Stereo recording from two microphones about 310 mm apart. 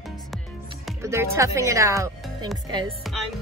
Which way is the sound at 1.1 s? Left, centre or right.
Centre.